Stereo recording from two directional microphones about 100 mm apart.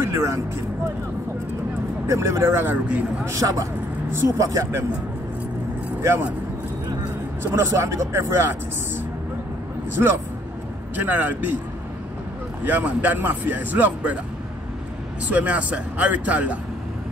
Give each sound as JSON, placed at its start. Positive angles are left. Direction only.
{"t": 0.0, "sound": "speech", "side_deg": -30}
{"t": 2.0, "sound": "speech", "side_deg": -30}
{"t": 3.3, "sound": "speech", "side_deg": -35}
{"t": 7.7, "sound": "speech", "side_deg": -30}
{"t": 11.0, "sound": "speech", "side_deg": -20}
{"t": 12.6, "sound": "speech", "side_deg": -15}
{"t": 15.2, "sound": "speech", "side_deg": -15}